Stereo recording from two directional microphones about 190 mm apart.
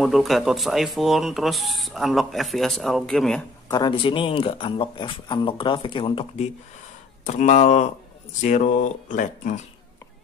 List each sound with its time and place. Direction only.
0.0 s speech: centre (ahead or behind)
3.6 s speech: 20° left (ahead or behind)
7.2 s speech: 40° left (ahead or behind)